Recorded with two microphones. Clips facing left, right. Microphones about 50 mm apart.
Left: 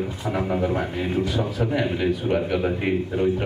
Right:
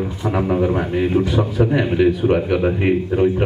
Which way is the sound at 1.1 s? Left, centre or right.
Right.